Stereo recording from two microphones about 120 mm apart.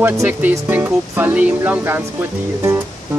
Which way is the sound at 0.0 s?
15° right (ahead or behind).